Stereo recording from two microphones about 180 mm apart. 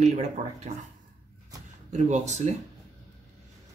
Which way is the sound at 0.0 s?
40° right (ahead or behind).